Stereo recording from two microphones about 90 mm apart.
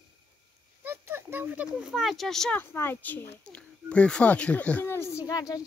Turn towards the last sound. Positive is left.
turn(degrees=40)  # may be behind; listen again after turning